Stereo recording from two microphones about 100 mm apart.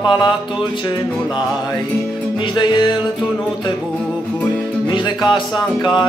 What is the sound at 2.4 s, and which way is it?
Music, 50° left (ahead or behind).